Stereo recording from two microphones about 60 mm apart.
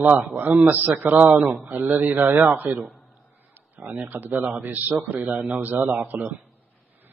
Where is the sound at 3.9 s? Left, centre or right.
Right.